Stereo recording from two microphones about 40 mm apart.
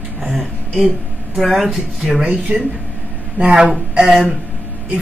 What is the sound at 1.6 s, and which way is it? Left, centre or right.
Speech, centre.